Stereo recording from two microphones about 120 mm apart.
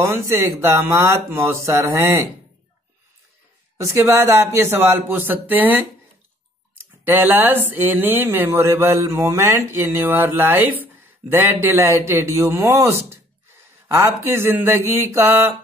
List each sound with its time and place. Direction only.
0.0 s speech: 25° right (ahead or behind)
3.7 s speech: 20° right (ahead or behind)
7.1 s speech: 15° right (ahead or behind)